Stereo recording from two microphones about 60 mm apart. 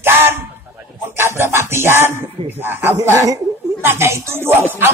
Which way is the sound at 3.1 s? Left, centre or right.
Right.